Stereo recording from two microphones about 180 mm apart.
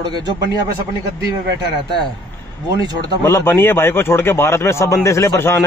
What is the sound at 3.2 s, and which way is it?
A man's voice, 15° left (ahead or behind).